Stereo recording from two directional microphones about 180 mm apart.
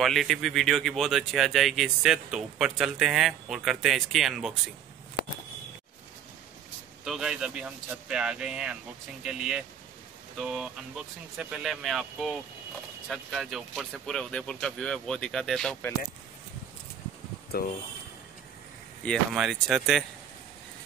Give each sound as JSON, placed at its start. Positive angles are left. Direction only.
{"t": 0.0, "sound": "speech", "side_deg": 0}
{"t": 5.2, "sound": "a sound", "side_deg": 65}
{"t": 7.1, "sound": "speech", "side_deg": -5}
{"t": 17.5, "sound": "speech", "side_deg": 55}
{"t": 19.3, "sound": "speech", "side_deg": 0}